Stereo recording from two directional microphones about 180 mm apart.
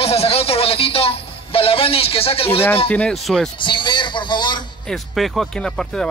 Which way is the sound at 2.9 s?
5° left (ahead or behind).